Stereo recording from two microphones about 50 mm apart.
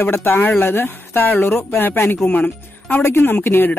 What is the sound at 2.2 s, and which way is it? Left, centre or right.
Speech, left.